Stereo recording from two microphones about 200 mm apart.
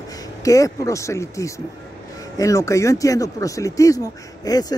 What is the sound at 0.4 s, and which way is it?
A man's voice, 15° left (ahead or behind).